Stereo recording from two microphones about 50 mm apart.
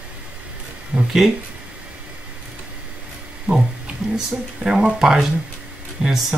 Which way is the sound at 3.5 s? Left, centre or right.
Centre.